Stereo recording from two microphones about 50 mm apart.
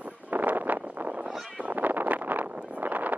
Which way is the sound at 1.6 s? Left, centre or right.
Right.